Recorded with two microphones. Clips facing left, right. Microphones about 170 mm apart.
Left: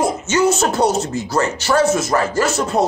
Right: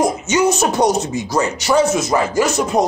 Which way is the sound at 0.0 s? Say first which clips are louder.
Right 1 dB; 15° right (ahead or behind).